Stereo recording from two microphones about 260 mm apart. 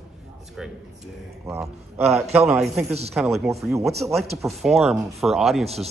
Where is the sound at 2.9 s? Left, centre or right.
Right.